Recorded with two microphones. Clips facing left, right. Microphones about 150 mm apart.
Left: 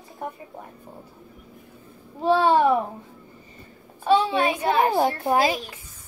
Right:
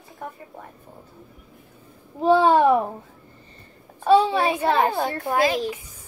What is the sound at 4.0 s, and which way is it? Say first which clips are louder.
Speech: right 2 dB; 30° right (ahead or behind).